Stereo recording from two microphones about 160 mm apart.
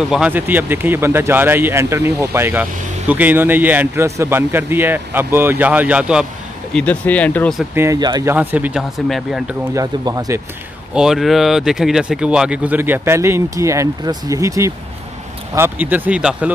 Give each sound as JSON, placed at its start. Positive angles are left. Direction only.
{"t": 0.1, "sound": "speech", "side_deg": -10}
{"t": 6.7, "sound": "speech", "side_deg": 10}
{"t": 7.7, "sound": "speech", "side_deg": -20}
{"t": 8.4, "sound": "speech", "side_deg": -10}
{"t": 9.8, "sound": "speech", "side_deg": -20}
{"t": 11.0, "sound": "speech", "side_deg": 0}